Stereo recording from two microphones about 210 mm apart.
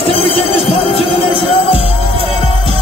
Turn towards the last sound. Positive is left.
turn(degrees=30)  # may be behind; listen again after turning